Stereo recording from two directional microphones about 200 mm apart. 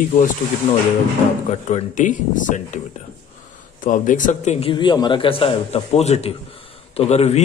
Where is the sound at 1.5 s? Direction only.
35° left (ahead or behind).